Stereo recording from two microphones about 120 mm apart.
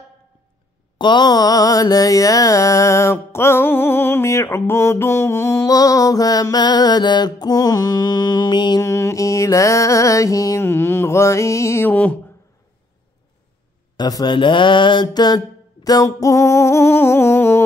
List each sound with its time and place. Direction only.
0.9 s mantra: 40° left (ahead or behind)
8.8 s mantra: 25° left (ahead or behind)
13.9 s mantra: 35° left (ahead or behind); by 17.6 s 20° left (ahead or behind)